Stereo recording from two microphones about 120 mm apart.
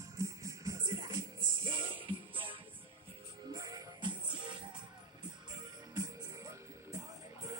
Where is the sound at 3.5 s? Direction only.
35° right (ahead or behind).